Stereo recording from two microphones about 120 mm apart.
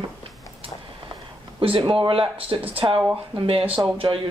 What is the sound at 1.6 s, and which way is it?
Speech, 45° right (ahead or behind).